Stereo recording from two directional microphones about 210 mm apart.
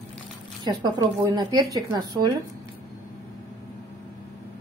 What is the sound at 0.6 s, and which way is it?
A woman's voice, 20° right (ahead or behind).